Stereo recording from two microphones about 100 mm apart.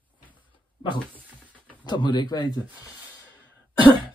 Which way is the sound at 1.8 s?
50° left (ahead or behind).